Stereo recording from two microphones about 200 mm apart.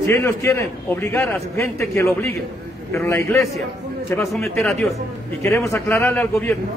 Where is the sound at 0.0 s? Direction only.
15° left (ahead or behind).